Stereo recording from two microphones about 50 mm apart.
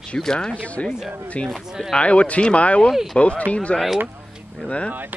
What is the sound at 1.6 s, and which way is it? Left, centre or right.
Speech, centre.